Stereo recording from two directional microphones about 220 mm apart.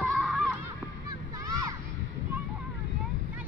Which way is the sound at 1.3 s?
15° right (ahead or behind).